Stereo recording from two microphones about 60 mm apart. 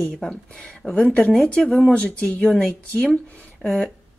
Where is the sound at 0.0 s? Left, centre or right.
Centre.